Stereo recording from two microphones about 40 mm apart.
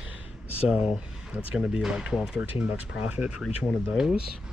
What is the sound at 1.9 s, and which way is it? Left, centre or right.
Speech, right.